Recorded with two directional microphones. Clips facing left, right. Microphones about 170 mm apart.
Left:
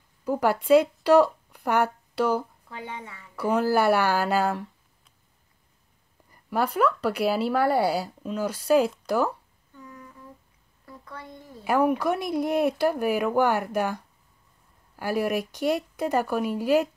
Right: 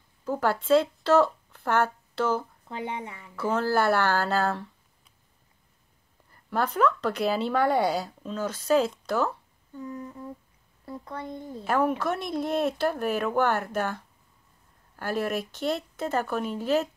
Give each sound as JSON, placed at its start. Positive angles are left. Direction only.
{"t": 0.2, "sound": "speech", "side_deg": 15}
{"t": 2.7, "sound": "speech", "side_deg": -20}
{"t": 3.3, "sound": "speech", "side_deg": 15}
{"t": 6.3, "sound": "speech", "side_deg": 10}
{"t": 9.8, "sound": "humming", "side_deg": -30}
{"t": 10.9, "sound": "speech", "side_deg": -30}
{"t": 11.6, "sound": "speech", "side_deg": 10}